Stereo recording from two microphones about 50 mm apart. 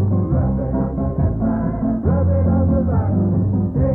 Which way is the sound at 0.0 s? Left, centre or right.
Centre.